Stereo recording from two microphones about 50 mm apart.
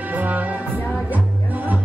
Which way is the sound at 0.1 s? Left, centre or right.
Right.